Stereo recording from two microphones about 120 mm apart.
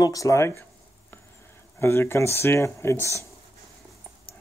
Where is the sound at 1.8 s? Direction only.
20° left (ahead or behind).